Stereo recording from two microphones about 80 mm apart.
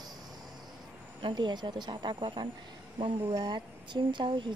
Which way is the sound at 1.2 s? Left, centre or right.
Right.